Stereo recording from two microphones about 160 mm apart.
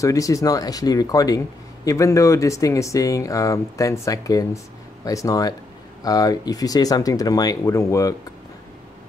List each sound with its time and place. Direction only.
0.0 s speech: 20° left (ahead or behind)